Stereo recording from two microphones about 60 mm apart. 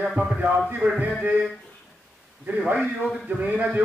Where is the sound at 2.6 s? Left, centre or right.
Right.